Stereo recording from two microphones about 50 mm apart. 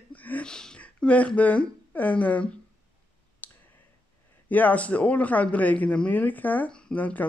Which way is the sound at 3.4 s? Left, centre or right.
Left.